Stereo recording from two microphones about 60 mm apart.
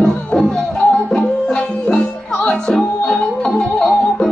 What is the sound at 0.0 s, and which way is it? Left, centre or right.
Music, centre.